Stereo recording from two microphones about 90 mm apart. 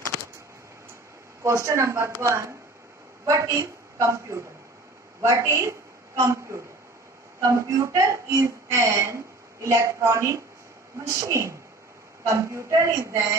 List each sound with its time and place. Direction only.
1.4 s a woman's voice: 35° right (ahead or behind)